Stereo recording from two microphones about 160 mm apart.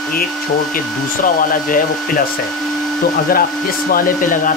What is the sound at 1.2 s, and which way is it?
Speech, 60° left (ahead or behind).